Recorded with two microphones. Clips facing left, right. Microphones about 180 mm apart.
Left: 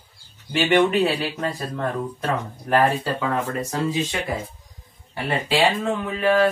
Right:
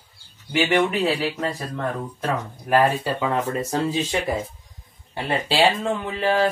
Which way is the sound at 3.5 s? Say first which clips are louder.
Right 1 dB; 25° right (ahead or behind).